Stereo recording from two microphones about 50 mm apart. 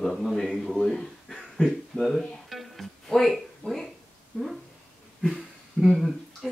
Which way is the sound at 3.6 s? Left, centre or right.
Left.